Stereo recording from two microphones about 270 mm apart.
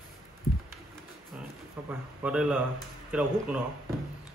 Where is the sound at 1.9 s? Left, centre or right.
Centre.